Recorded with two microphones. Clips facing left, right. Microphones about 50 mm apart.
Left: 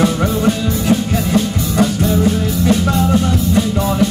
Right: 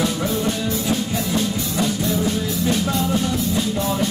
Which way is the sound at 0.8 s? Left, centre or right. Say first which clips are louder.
Left 6 dB; left.